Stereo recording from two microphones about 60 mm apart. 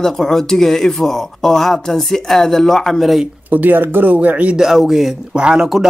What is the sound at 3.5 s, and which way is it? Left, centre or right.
Speech, right.